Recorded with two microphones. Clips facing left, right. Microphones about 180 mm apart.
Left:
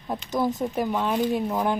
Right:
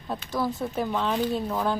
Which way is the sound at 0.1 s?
20° left (ahead or behind).